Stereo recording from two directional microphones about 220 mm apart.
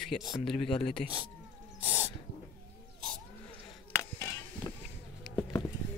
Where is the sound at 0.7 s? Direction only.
25° left (ahead or behind).